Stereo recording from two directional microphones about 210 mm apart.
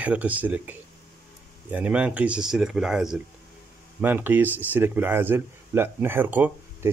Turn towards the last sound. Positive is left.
turn(degrees=-10)  # may be behind; listen again after turning